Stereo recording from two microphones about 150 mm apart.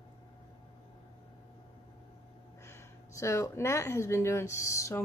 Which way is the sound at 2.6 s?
20° left (ahead or behind).